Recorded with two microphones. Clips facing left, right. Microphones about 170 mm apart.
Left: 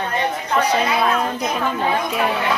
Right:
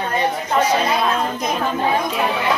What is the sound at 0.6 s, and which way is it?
Speech, 10° left (ahead or behind).